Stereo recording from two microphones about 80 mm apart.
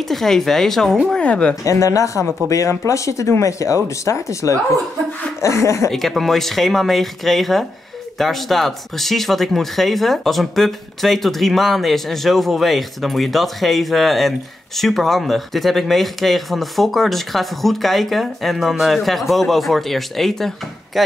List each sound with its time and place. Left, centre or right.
0.1 s speech: centre
1.6 s speech: left
5.9 s speech: centre